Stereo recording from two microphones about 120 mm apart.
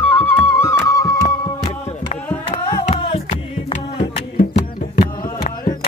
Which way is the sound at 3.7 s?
75° left (ahead or behind).